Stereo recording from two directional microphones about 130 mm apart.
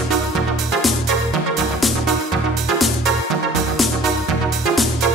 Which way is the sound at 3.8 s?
Centre (ahead or behind).